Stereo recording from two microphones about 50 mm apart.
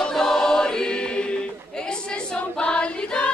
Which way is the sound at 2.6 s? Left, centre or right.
Left.